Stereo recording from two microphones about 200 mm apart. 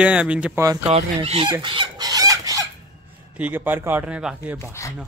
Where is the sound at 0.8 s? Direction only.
30° right (ahead or behind); by 4.6 s 5° right (ahead or behind).